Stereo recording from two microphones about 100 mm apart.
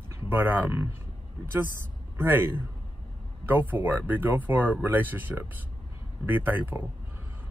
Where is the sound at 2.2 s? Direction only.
20° right (ahead or behind).